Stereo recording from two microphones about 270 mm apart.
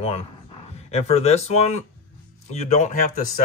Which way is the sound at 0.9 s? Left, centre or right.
Left.